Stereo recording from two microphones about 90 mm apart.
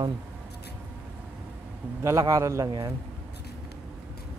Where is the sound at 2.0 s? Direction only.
35° right (ahead or behind).